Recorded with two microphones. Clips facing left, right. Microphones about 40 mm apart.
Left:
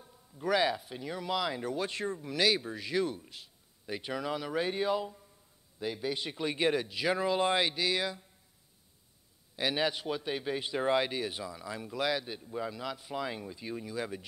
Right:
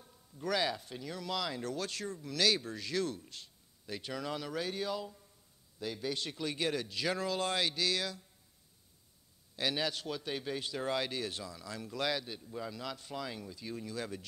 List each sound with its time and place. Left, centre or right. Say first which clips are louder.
0.0 s a man's voice: left 4 dB; centre
4.6 s speech: left 8 dB; left
9.6 s a man's voice: left 4 dB; centre